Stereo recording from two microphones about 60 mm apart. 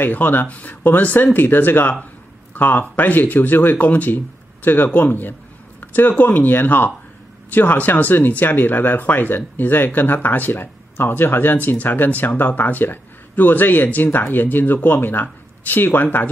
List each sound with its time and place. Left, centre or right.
0.0 s speech: left